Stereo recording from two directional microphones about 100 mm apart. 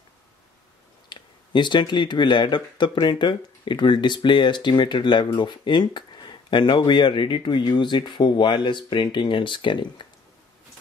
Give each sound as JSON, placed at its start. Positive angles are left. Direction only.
{"t": 1.0, "sound": "speech", "side_deg": 50}